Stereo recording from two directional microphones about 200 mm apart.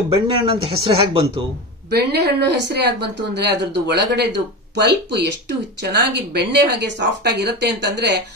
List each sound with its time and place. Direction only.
0.1 s speech: 30° right (ahead or behind)
1.9 s a woman's voice: 55° right (ahead or behind)